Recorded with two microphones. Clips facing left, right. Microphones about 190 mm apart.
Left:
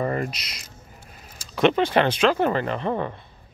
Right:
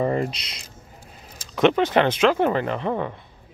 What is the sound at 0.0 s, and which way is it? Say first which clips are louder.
Speech: right 3 dB; 20° right (ahead or behind).